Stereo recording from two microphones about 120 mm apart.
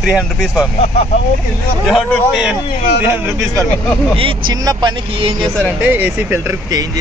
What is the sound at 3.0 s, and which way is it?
Speech, 15° right (ahead or behind).